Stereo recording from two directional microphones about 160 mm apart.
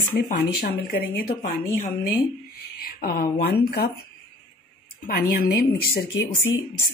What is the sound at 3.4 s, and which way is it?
Speech, 80° left.